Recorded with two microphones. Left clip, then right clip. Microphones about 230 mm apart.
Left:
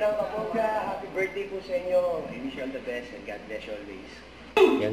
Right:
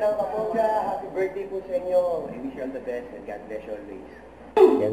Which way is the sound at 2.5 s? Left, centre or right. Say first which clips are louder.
Right 2 dB; centre.